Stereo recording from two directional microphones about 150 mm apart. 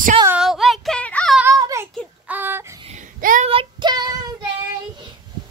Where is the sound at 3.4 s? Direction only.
35° right (ahead or behind).